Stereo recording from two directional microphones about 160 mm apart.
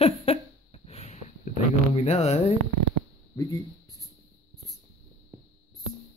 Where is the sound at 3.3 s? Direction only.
20° left (ahead or behind).